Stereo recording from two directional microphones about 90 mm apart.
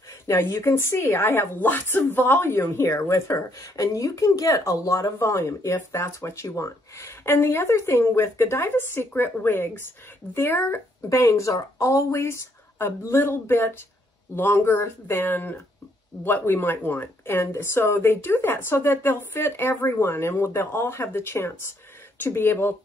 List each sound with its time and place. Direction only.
0.3 s a woman's voice: 30° left (ahead or behind)